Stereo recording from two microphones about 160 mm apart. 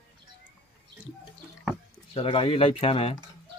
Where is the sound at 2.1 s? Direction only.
35° left (ahead or behind).